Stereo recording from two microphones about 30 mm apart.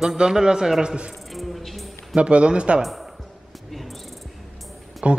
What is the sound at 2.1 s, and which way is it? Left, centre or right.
Speech, right.